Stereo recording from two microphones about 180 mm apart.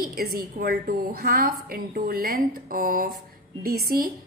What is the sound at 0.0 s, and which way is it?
A woman's voice, 55° right (ahead or behind).